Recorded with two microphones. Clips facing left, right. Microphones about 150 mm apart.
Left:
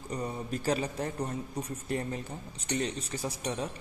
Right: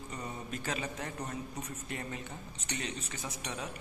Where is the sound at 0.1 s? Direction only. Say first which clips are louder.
Left 7 dB; 35° left (ahead or behind).